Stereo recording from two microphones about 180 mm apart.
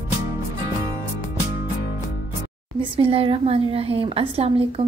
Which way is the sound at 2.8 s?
30° right (ahead or behind).